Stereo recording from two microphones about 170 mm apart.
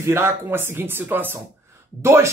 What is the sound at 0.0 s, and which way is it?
Speech, 15° right (ahead or behind).